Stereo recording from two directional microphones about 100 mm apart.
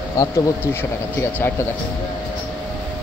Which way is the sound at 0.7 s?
20° left (ahead or behind).